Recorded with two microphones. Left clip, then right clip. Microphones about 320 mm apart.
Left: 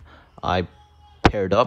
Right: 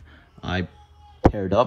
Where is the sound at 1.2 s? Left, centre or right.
Right.